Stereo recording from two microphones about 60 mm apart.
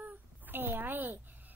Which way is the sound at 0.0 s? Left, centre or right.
Right.